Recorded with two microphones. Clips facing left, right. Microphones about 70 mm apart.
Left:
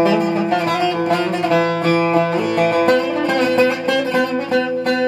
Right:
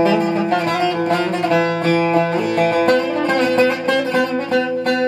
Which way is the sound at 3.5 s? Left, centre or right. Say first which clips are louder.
Even; right.